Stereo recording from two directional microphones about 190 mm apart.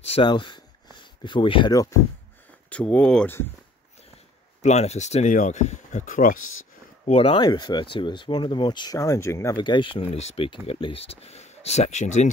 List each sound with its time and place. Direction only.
0.0 s speech: 30° left (ahead or behind)
2.7 s speech: 5° left (ahead or behind)
4.6 s speech: 35° left (ahead or behind)
7.1 s speech: 30° left (ahead or behind); by 9.6 s 15° left (ahead or behind)
9.6 s speech: 25° left (ahead or behind)